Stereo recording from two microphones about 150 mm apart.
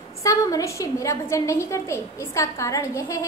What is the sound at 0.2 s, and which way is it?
A woman's voice, 20° left (ahead or behind).